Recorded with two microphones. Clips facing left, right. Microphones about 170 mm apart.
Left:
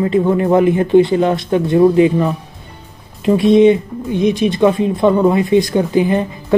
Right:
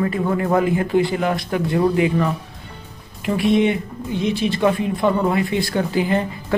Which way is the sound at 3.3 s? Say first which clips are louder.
Left 8 dB; 20° left (ahead or behind).